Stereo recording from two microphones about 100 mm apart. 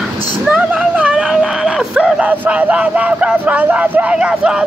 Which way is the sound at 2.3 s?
15° right (ahead or behind).